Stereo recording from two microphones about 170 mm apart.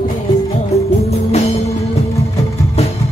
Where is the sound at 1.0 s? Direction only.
40° left (ahead or behind).